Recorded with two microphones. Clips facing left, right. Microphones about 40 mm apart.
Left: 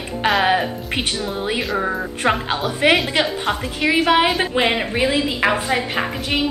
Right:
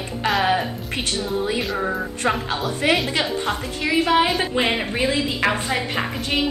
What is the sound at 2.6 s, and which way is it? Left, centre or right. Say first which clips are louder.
A woman's voice: left 4 dB; left.